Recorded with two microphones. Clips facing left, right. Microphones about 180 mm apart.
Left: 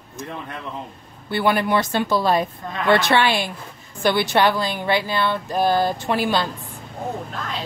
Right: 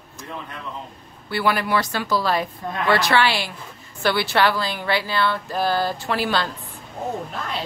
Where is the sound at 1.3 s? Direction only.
20° left (ahead or behind).